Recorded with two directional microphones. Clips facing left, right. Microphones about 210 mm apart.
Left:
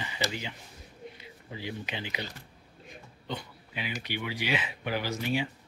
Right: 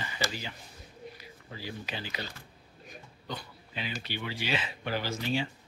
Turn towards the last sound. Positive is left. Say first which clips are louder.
# left 1 dB
turn(degrees=15)  # may be behind; listen again after turning